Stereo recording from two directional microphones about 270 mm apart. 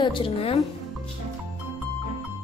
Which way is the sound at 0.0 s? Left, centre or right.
Centre.